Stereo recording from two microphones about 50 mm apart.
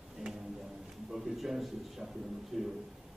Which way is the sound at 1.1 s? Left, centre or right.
Centre.